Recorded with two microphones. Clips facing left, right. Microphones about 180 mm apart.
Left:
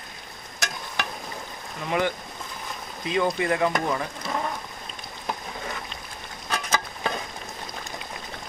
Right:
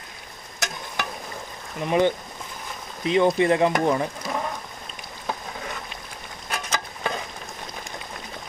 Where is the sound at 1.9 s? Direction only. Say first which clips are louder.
Right 5 dB; 20° right (ahead or behind).